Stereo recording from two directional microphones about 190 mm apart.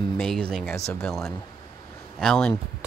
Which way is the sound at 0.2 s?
5° left (ahead or behind).